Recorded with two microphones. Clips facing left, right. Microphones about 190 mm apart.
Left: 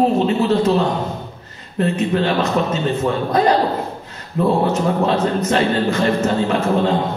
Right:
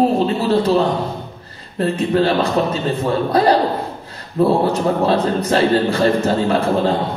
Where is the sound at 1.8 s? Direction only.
35° right (ahead or behind).